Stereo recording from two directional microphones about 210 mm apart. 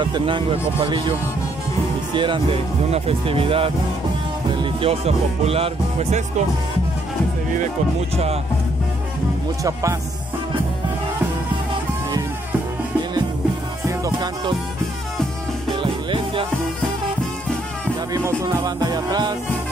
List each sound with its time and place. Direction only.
0.0 s music: 20° right (ahead or behind)
2.1 s music: 25° right (ahead or behind)
9.6 s music: 15° right (ahead or behind)
13.8 s music: 15° right (ahead or behind)
15.7 s music: 25° right (ahead or behind)
18.1 s music: 15° right (ahead or behind)